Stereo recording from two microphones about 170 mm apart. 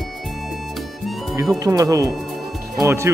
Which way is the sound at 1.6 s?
20° right (ahead or behind).